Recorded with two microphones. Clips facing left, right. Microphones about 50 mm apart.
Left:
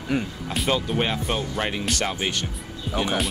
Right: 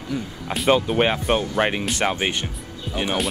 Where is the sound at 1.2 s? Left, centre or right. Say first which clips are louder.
Right 6 dB; right.